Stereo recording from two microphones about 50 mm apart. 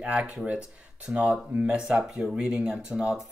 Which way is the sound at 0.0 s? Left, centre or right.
Centre.